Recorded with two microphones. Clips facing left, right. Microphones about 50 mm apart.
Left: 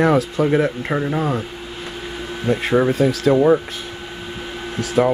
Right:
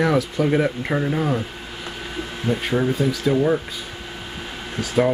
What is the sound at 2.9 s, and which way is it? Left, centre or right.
Speech, left.